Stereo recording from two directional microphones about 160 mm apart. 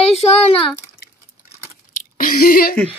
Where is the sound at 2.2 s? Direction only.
65° left (ahead or behind).